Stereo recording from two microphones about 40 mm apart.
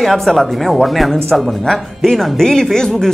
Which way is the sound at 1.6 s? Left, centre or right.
Centre.